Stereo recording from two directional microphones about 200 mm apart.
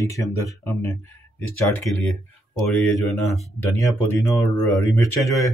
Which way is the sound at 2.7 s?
Centre (ahead or behind).